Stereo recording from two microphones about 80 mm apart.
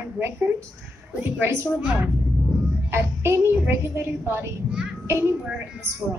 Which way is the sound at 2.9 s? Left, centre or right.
Right.